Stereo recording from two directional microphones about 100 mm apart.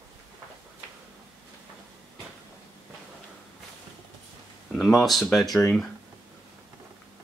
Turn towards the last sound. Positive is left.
turn(degrees=5)  # may be behind; listen again after turning